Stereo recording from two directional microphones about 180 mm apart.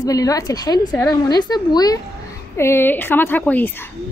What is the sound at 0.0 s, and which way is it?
A woman's voice, 20° left (ahead or behind).